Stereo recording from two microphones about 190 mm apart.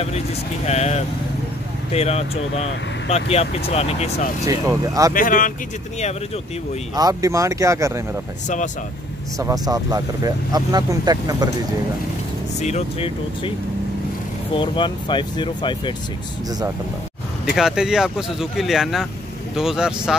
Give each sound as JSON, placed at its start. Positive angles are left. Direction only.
{"t": 0.7, "sound": "speech", "side_deg": 35}
{"t": 4.5, "sound": "speech", "side_deg": -15}
{"t": 5.1, "sound": "speech", "side_deg": 45}
{"t": 7.0, "sound": "speech", "side_deg": -20}
{"t": 9.4, "sound": "speech", "side_deg": -20}
{"t": 12.5, "sound": "speech", "side_deg": 35}
{"t": 14.5, "sound": "speech", "side_deg": 25}
{"t": 16.4, "sound": "speech", "side_deg": -20}
{"t": 17.5, "sound": "speech", "side_deg": 0}